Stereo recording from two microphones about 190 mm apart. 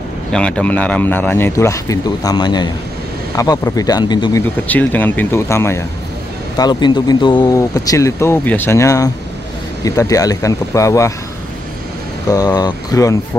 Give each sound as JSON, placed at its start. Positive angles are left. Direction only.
{"t": 0.3, "sound": "speech", "side_deg": 5}
{"t": 4.6, "sound": "speech", "side_deg": 10}
{"t": 12.5, "sound": "speech", "side_deg": 20}